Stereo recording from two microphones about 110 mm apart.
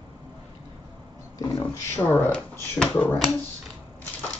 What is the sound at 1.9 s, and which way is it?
Speech, 20° left (ahead or behind).